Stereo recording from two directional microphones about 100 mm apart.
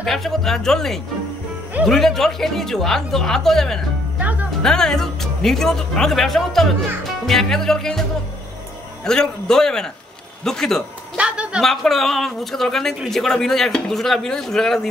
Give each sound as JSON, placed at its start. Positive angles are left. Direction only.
{"t": 0.0, "sound": "speech", "side_deg": 5}
{"t": 4.2, "sound": "music", "side_deg": -15}
{"t": 4.6, "sound": "speech", "side_deg": 5}
{"t": 9.0, "sound": "a man's voice", "side_deg": 5}
{"t": 11.1, "sound": "a woman's voice", "side_deg": -10}
{"t": 11.6, "sound": "speech", "side_deg": 5}